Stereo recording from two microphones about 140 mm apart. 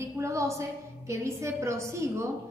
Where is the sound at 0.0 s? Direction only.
20° right (ahead or behind).